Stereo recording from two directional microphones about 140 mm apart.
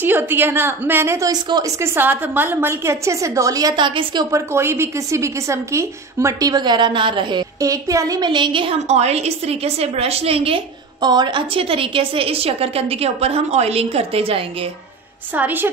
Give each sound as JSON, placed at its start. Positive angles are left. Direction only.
{"t": 0.0, "sound": "a woman's voice", "side_deg": -15}
{"t": 4.5, "sound": "a woman's voice", "side_deg": -20}
{"t": 8.8, "sound": "a woman's voice", "side_deg": -55}
{"t": 15.3, "sound": "a woman's voice", "side_deg": -15}